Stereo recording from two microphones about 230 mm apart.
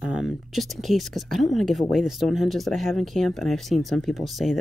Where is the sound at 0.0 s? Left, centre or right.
Centre.